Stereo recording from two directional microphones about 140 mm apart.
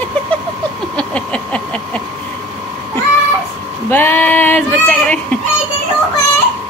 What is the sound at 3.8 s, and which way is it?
Speech, 15° left (ahead or behind).